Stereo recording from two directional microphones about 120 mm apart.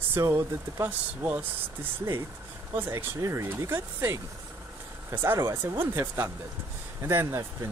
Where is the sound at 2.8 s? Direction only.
20° right (ahead or behind).